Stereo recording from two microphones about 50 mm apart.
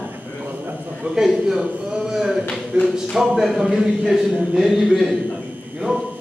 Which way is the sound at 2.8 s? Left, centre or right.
Centre.